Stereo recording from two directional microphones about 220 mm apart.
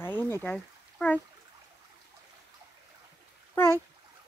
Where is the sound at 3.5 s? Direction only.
10° left (ahead or behind).